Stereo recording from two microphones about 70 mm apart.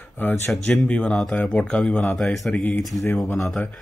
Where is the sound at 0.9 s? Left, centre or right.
Centre.